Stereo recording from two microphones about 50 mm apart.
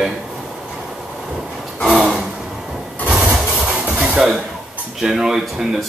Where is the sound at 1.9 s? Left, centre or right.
Centre.